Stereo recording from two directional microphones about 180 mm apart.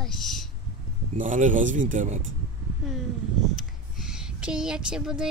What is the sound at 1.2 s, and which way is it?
Speech, 45° right (ahead or behind).